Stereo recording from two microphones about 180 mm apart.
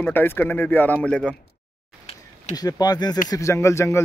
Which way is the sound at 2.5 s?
20° left (ahead or behind).